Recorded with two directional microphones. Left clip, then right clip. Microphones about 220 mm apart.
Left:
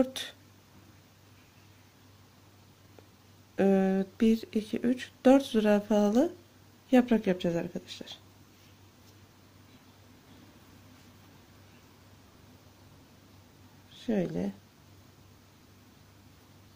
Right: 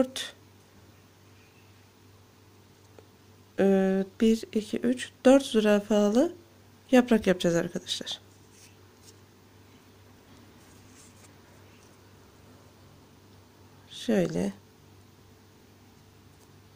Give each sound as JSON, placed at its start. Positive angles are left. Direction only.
{"t": 0.0, "sound": "speech", "side_deg": -5}
{"t": 3.5, "sound": "speech", "side_deg": -5}
{"t": 13.9, "sound": "speech", "side_deg": -25}